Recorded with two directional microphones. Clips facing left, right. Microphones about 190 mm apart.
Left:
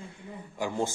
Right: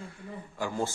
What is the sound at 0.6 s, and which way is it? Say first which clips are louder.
Speech: left 2 dB; 15° left (ahead or behind).